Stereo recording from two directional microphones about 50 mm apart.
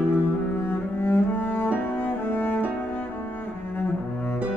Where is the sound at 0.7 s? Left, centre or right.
Left.